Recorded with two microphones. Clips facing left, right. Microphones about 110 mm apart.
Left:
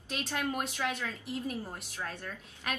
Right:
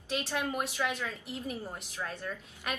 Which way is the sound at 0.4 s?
15° right (ahead or behind).